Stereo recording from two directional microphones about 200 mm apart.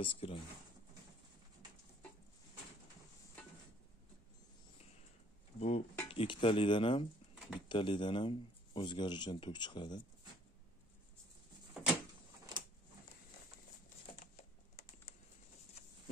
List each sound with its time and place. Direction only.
0.0 s speech: 25° left (ahead or behind)
5.6 s stir: 30° left (ahead or behind)
6.0 s speech: 25° left (ahead or behind)
7.3 s bird: 5° right (ahead or behind)
7.6 s speech: 25° left (ahead or behind)